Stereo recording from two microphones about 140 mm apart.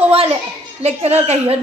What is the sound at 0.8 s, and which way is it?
Speech, 50° right (ahead or behind).